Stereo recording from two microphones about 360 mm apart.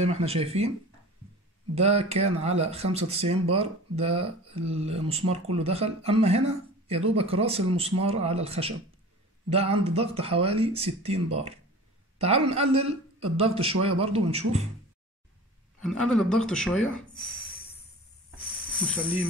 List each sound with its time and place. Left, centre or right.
0.0 s speech: centre
1.8 s speech: centre
15.8 s speech: centre
18.8 s speech: centre